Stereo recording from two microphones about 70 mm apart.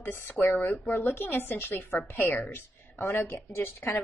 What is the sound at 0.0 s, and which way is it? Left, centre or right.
Speech, left.